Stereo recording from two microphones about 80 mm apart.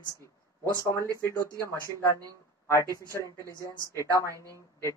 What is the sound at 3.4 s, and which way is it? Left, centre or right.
Speech, left.